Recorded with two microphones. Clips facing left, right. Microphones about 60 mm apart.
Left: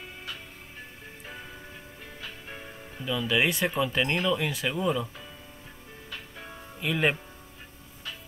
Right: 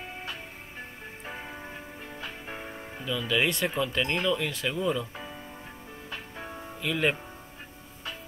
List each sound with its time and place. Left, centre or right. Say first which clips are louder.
1.2 s music: right 4 dB; right
3.1 s speech: left 1 dB; centre
6.0 s music: right 3 dB; right
6.8 s speech: left 1 dB; centre